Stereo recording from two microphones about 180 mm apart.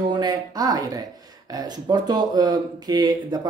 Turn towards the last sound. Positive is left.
turn(degrees=-20)  # may be behind; listen again after turning